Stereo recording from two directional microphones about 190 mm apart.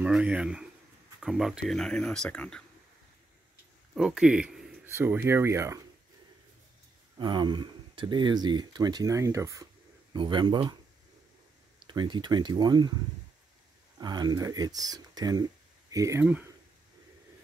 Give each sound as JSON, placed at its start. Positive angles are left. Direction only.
{"t": 0.0, "sound": "speech", "side_deg": -5}
{"t": 3.9, "sound": "speech", "side_deg": -5}
{"t": 7.2, "sound": "speech", "side_deg": -25}
{"t": 11.8, "sound": "speech", "side_deg": -25}
{"t": 13.9, "sound": "speech", "side_deg": -20}